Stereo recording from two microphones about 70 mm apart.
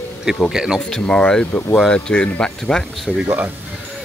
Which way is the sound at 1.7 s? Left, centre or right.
Centre.